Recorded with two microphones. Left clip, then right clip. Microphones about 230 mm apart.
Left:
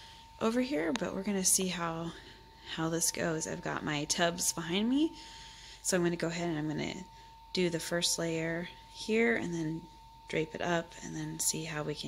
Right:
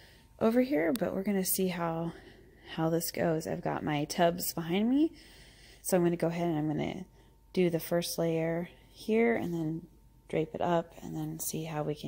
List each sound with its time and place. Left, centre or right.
0.4 s a woman's voice: centre